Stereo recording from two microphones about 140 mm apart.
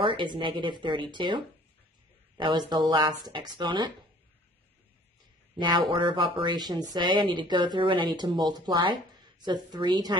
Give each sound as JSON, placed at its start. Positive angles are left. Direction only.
{"t": 0.0, "sound": "speech", "side_deg": -35}
{"t": 5.6, "sound": "speech", "side_deg": -30}